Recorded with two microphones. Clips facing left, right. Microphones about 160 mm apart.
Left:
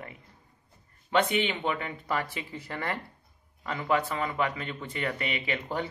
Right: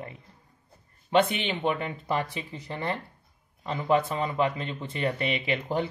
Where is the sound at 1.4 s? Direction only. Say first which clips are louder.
Right 3 dB; 30° right (ahead or behind).